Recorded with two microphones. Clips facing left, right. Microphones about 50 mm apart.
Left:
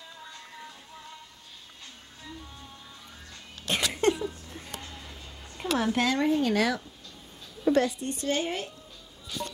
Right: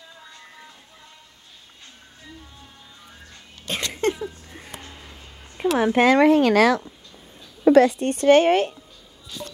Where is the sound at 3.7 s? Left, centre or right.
Centre.